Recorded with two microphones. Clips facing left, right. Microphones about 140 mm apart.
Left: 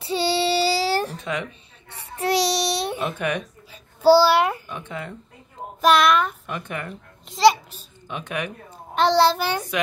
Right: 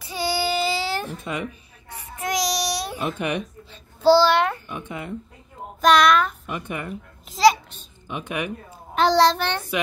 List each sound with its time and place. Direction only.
0.0 s child singing: 30° left (ahead or behind)
1.2 s speech: 10° right (ahead or behind)
2.0 s babbling: 30° left (ahead or behind)
3.7 s babbling: 10° left (ahead or behind)
4.6 s speech: 10° right (ahead or behind)
5.8 s a child's voice: 5° left (ahead or behind)
6.5 s a child's voice: 10° right (ahead or behind)
9.0 s a child's voice: centre (ahead or behind)